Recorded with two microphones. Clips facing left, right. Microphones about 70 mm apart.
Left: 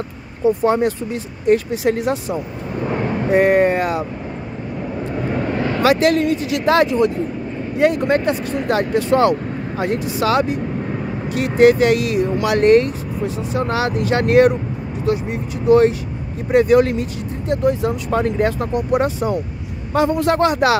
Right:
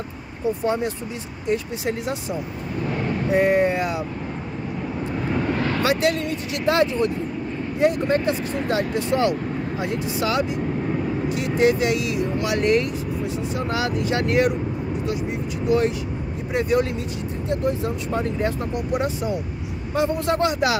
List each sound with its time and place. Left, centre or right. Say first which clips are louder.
1.5 s speech: left 8 dB; left
2.9 s vehicle: left 5 dB; left
3.3 s speech: left 5 dB; left
5.3 s vehicle: left 2 dB; centre
5.9 s speech: left 9 dB; left
7.8 s speech: left 4 dB; left
16.5 s speech: left 8 dB; left
17.5 s speech: left 6 dB; left
20.0 s speech: left 5 dB; left